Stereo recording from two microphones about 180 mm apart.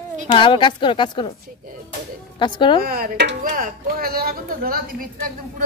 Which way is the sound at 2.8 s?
55° right (ahead or behind).